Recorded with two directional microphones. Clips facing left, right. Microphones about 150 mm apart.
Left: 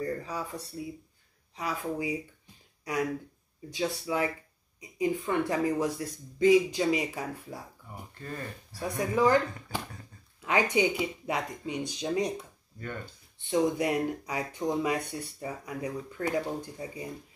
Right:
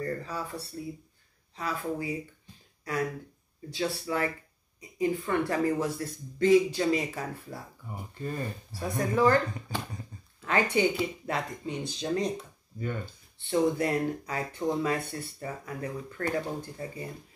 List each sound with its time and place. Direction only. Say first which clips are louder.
0.0 s speech: even; 15° left (ahead or behind)
8.2 s speech: right 5 dB; 15° right (ahead or behind)
8.8 s speech: right 1 dB; 10° left (ahead or behind)
13.4 s speech: right 1 dB; 15° left (ahead or behind)